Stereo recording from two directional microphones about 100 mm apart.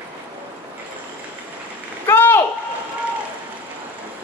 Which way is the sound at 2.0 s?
20° left (ahead or behind).